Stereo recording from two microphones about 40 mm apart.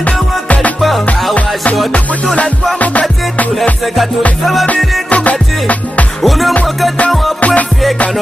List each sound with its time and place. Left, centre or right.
0.0 s music: left
0.7 s music: centre
1.3 s music: left
2.8 s music: left
3.8 s music: centre
5.1 s music: left
6.2 s music: centre
7.3 s music: left